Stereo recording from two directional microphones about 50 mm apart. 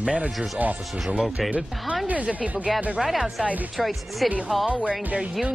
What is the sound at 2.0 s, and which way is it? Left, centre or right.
Speech, right.